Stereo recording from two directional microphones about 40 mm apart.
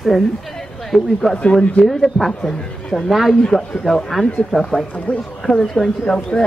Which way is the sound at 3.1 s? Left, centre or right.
Centre.